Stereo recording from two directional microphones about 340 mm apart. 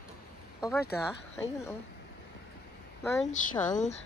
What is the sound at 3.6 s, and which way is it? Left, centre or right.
Speech, left.